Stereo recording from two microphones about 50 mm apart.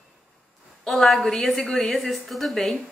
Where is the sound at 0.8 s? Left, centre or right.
Centre.